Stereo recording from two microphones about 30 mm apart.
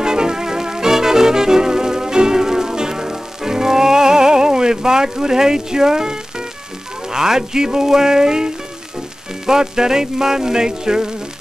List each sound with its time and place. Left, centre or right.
0.0 s music: right